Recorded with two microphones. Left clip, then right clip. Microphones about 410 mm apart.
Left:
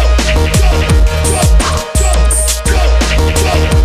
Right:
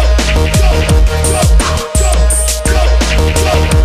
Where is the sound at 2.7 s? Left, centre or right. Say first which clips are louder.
Even; centre.